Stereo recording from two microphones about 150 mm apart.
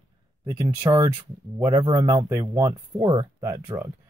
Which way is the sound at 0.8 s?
25° right (ahead or behind).